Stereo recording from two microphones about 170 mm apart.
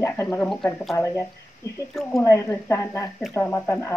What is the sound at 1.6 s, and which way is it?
Speech, 20° left (ahead or behind).